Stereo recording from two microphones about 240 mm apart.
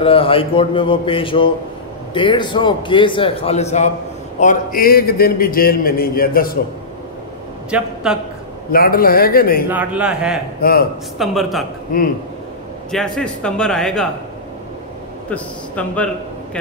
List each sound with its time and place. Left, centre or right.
0.0 s a man's voice: left
7.7 s a man's voice: centre
8.7 s a man's voice: left
9.7 s a man's voice: centre
10.6 s a man's voice: left
11.1 s a man's voice: centre
11.9 s a man's voice: left
12.9 s a man's voice: centre
15.2 s a man's voice: centre